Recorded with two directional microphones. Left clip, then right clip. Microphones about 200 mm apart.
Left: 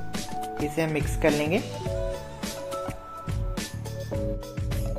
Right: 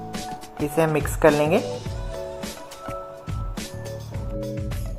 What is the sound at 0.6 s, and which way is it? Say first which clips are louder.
Speech: right 8 dB; 10° right (ahead or behind).